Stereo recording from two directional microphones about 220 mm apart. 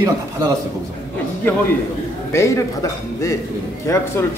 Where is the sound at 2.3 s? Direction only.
15° left (ahead or behind).